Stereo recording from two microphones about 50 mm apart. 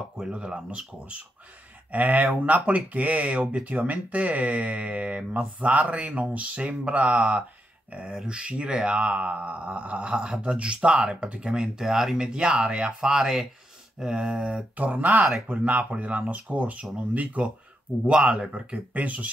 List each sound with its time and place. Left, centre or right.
0.3 s speech: right
1.9 s speech: right
8.1 s speech: centre
10.1 s speech: centre
14.8 s speech: right
18.0 s speech: centre